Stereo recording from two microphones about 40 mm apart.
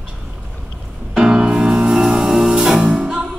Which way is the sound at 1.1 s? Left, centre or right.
Centre.